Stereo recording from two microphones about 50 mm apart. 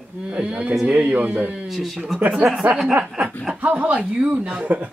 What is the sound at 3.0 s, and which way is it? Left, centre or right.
Speech, centre.